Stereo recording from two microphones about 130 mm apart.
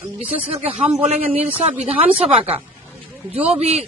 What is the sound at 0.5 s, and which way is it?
Speech, 45° right (ahead or behind).